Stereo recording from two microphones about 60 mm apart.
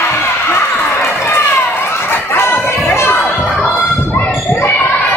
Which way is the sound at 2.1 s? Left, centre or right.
Left.